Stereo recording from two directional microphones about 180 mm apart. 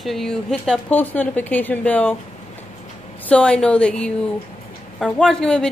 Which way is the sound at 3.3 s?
5° left (ahead or behind).